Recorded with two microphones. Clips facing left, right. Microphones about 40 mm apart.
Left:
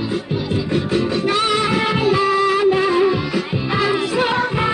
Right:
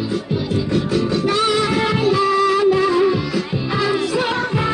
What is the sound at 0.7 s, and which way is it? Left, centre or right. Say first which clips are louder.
Music: even; left.